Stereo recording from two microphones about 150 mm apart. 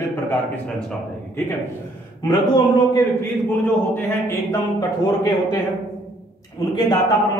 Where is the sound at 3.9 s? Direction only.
20° left (ahead or behind).